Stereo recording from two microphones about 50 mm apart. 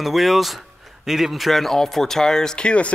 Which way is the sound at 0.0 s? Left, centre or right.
Centre.